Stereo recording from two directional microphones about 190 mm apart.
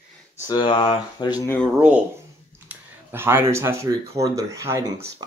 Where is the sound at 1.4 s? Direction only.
10° left (ahead or behind).